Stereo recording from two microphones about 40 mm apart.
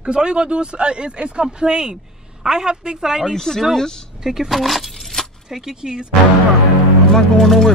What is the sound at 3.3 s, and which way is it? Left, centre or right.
Speech, centre.